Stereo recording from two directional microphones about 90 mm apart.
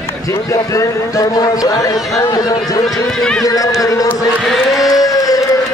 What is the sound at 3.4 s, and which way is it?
Speech, 40° left (ahead or behind).